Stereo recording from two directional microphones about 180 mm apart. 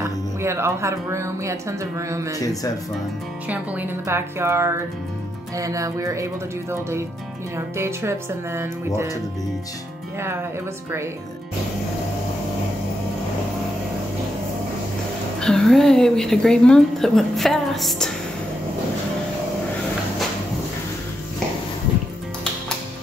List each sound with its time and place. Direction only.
0.0 s speech: 15° right (ahead or behind)
2.3 s speech: 20° left (ahead or behind)
3.4 s speech: 10° right (ahead or behind)
15.4 s a woman's voice: 5° left (ahead or behind)